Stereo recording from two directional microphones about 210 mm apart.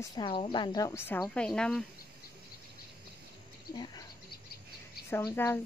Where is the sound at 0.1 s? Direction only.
25° left (ahead or behind); by 1.9 s centre (ahead or behind).